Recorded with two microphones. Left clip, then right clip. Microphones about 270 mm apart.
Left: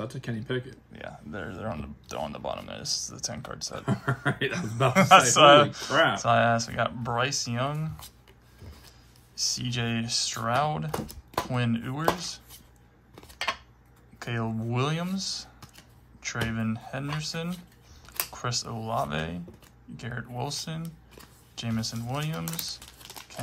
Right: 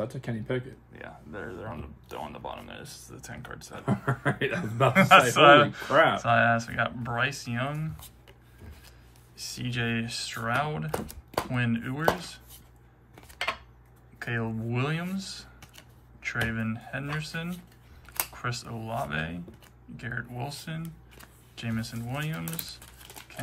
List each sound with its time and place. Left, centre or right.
0.0 s speech: centre
1.7 s speech: left
3.8 s speech: centre
9.4 s speech: centre
13.1 s cutlery: centre
14.1 s speech: centre